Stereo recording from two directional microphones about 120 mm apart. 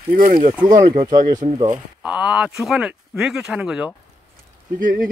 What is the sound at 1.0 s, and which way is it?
Speech, 35° right (ahead or behind).